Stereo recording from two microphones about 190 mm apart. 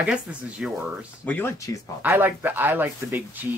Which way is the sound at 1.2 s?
10° left (ahead or behind).